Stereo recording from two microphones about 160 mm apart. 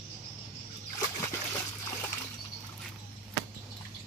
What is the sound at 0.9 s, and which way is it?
Splash, 15° left (ahead or behind).